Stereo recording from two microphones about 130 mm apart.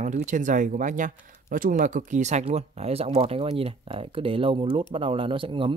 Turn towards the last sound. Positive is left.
turn(degrees=-40)  # may be behind; listen again after turning